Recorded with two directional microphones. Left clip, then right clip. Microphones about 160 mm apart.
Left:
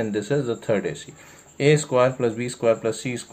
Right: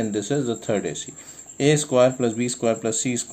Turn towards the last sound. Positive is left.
turn(degrees=-30)  # may be behind; listen again after turning